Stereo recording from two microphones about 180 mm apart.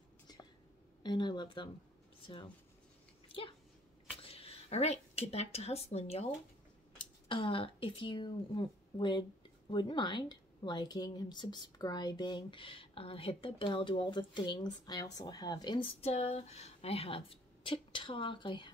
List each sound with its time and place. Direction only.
1.0 s speech: 25° left (ahead or behind)
3.3 s a sound: 30° left (ahead or behind)
4.2 s a woman's voice: 30° left (ahead or behind)